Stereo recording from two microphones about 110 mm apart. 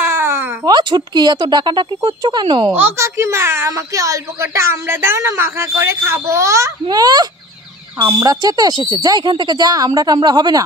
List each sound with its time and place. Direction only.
0.0 s a sound: 20° right (ahead or behind)
0.7 s speech: 40° right (ahead or behind)
2.7 s a child's voice: 20° right (ahead or behind); by 10.6 s 40° right (ahead or behind)